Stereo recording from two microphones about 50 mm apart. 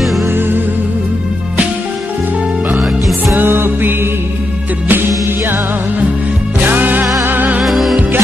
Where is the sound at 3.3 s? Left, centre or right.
Right.